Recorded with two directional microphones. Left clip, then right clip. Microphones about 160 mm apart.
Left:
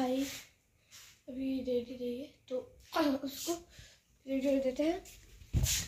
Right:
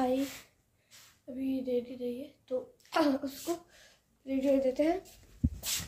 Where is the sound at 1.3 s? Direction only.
30° left (ahead or behind).